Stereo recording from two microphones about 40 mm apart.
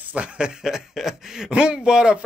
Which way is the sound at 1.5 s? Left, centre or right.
Right.